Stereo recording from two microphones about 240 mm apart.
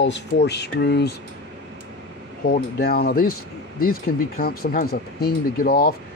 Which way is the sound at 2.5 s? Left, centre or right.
Left.